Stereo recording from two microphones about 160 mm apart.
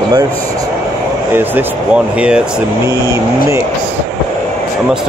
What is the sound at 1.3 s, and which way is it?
Speech, 10° right (ahead or behind).